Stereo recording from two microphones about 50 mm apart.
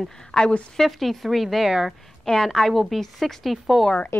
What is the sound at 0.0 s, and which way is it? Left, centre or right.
A woman's voice, centre.